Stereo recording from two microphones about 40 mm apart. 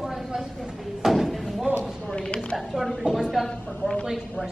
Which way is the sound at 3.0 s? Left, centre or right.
Centre.